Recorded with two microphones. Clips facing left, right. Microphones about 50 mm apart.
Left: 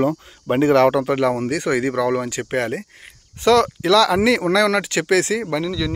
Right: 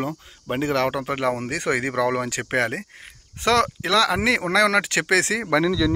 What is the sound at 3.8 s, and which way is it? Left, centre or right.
Speech, right.